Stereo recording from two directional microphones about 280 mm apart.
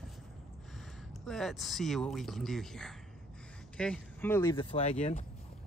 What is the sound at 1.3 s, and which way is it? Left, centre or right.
Speech, centre.